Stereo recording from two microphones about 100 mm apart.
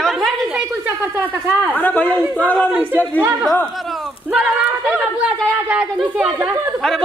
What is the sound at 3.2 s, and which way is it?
Speech, 15° right (ahead or behind).